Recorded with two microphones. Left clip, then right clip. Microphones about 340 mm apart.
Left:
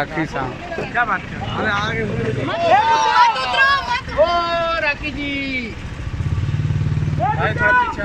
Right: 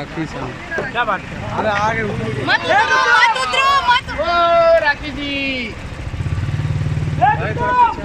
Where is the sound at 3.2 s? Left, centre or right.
Centre.